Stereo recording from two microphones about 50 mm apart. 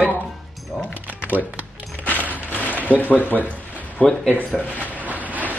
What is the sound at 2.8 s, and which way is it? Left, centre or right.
Speech, right.